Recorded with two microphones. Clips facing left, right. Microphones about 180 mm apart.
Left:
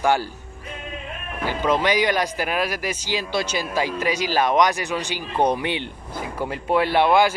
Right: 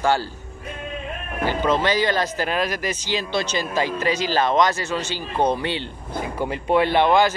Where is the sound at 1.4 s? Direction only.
10° left (ahead or behind).